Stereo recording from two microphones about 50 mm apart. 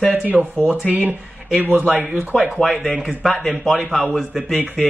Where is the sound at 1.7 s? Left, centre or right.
Right.